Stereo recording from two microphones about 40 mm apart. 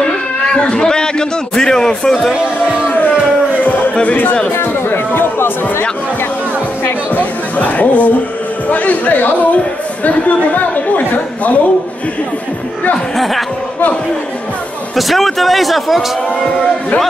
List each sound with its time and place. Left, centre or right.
0.7 s a man's voice: centre
3.6 s music: left
3.9 s speech: left
4.6 s speech: left
7.1 s music: left
8.6 s a man's voice: left
15.0 s speech: centre